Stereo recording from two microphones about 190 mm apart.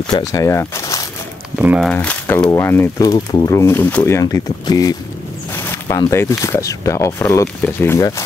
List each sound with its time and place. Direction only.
0.0 s speech: 20° left (ahead or behind)
1.6 s speech: 5° right (ahead or behind)
1.9 s speech: 5° left (ahead or behind)